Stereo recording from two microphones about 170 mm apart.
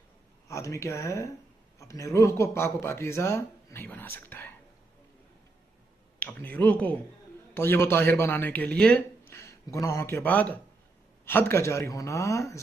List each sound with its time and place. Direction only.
0.5 s speech: 20° left (ahead or behind)
6.1 s speech: 10° left (ahead or behind)